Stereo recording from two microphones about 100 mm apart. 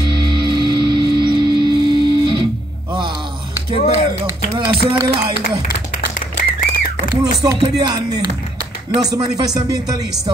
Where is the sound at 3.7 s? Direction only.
90° left.